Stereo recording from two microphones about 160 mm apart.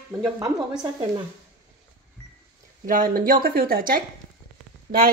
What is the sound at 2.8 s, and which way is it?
Speech, 60° right (ahead or behind).